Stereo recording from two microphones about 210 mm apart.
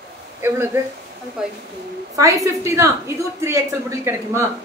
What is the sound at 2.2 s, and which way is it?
A woman's voice, 15° right (ahead or behind).